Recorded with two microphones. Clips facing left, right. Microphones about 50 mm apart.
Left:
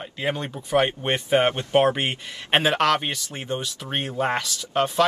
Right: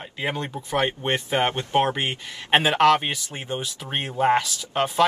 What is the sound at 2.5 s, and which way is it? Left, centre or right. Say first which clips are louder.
Speech: right 2 dB; centre.